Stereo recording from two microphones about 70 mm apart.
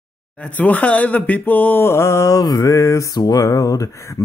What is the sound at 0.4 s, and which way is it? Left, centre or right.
Speech, left.